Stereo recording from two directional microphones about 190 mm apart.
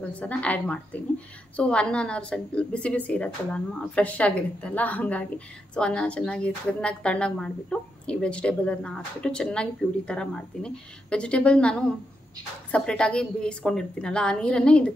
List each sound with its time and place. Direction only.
0.0 s a woman's voice: 10° left (ahead or behind)